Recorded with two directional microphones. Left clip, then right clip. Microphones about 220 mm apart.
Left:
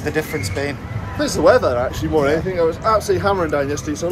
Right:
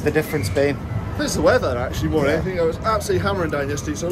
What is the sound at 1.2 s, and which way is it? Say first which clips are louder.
Speech: left 4 dB; centre (ahead or behind).